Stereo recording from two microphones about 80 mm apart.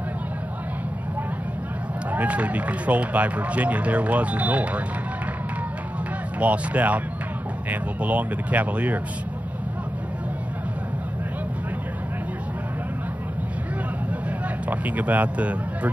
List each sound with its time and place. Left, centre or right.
2.1 s speech: centre
6.4 s speech: centre
14.7 s speech: centre